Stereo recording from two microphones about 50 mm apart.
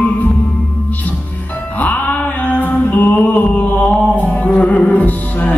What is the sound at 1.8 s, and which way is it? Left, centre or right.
Mantra, left.